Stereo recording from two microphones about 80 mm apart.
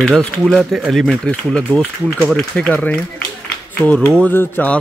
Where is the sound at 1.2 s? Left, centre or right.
Centre.